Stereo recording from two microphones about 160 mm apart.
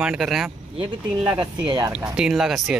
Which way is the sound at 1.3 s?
25° right (ahead or behind).